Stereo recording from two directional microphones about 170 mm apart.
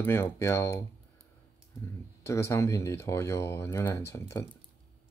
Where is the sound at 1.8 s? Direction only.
15° left (ahead or behind).